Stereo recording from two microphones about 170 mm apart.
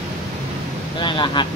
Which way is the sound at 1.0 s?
25° left (ahead or behind).